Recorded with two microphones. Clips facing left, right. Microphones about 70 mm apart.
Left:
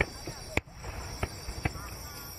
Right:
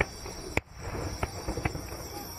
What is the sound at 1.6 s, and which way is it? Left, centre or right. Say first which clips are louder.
Clip-clop: left 1 dB; centre.